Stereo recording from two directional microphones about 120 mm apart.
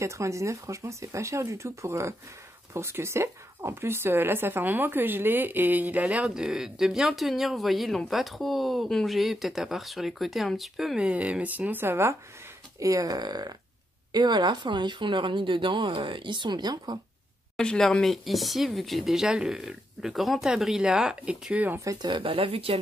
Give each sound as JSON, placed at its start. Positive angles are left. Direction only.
{"t": 0.0, "sound": "speech", "side_deg": -25}
{"t": 17.6, "sound": "speech", "side_deg": 5}
{"t": 21.7, "sound": "speech", "side_deg": -30}